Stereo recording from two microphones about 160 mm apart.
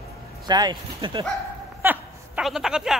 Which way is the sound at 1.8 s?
10° right (ahead or behind).